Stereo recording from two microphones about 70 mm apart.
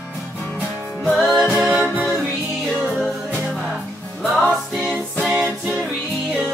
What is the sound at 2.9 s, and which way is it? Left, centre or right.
Music, centre.